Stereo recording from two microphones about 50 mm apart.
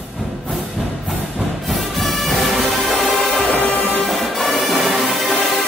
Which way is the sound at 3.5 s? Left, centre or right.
Left.